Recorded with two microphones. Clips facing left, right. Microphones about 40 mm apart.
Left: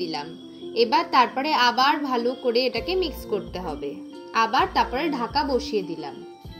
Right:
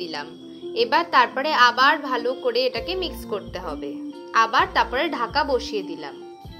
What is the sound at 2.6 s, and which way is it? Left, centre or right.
A woman's voice, centre.